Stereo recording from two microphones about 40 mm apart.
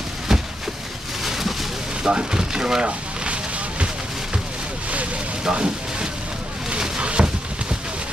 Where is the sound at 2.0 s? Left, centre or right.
Right.